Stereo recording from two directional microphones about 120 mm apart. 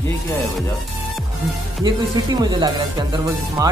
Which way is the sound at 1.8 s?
35° right (ahead or behind).